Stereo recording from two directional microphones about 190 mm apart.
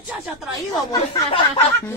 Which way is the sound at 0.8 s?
15° left (ahead or behind).